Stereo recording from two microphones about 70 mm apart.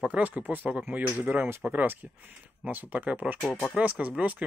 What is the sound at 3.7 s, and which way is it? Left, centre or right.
Speech, right.